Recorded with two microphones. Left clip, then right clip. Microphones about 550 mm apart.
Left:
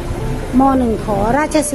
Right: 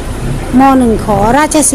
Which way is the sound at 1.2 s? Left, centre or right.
Left.